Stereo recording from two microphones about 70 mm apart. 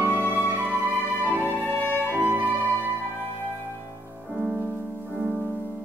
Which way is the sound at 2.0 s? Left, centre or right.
Right.